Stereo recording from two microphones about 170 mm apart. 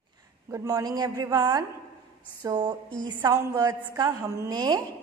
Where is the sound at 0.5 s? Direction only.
20° right (ahead or behind).